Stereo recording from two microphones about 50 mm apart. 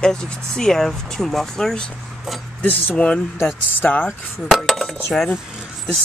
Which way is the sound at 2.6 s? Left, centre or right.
Left.